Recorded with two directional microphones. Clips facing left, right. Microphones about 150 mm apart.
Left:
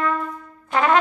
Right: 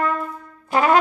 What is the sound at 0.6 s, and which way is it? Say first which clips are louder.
Brass instrument: right 2 dB; 10° right (ahead or behind).